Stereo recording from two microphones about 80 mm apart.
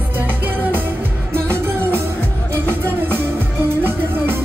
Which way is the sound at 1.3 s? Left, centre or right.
Right.